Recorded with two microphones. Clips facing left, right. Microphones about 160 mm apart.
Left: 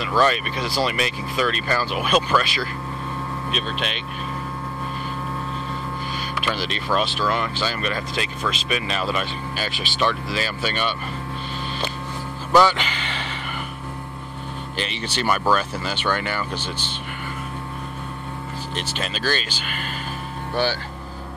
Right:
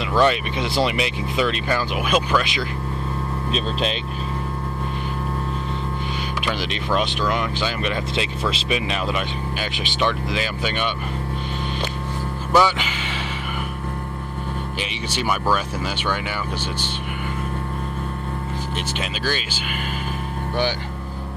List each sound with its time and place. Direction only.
0.2 s speech: 20° right (ahead or behind)
6.4 s speech: 15° right (ahead or behind)
12.5 s speech: 10° right (ahead or behind)
14.8 s speech: 10° right (ahead or behind)
18.9 s speech: 10° right (ahead or behind)